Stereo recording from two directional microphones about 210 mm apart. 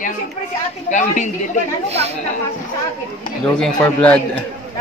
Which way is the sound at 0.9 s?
35° left (ahead or behind).